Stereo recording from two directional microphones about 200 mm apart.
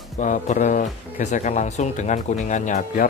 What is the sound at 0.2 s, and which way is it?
Speech, 40° left (ahead or behind).